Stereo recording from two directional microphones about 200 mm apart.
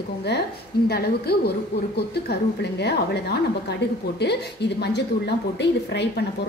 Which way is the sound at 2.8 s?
55° left (ahead or behind).